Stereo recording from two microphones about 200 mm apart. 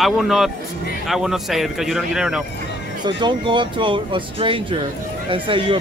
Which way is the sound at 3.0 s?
20° right (ahead or behind).